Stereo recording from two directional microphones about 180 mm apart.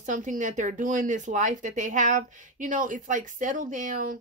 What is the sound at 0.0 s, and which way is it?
Speech, 45° right (ahead or behind).